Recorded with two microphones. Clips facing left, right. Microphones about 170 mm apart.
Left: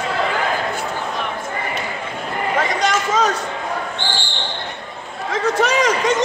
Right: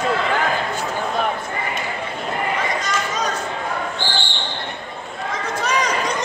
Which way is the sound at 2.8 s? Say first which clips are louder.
Left 6 dB; 90° left.